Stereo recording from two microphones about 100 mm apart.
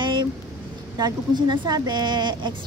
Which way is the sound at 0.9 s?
40° right (ahead or behind).